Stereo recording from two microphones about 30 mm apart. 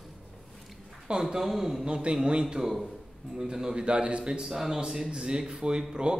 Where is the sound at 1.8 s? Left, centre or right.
Right.